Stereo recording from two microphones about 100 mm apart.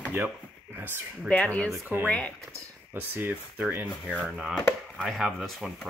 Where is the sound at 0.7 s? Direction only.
20° right (ahead or behind).